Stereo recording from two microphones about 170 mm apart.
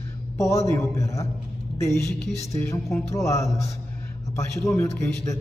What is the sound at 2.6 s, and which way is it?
A man's voice, 15° left (ahead or behind).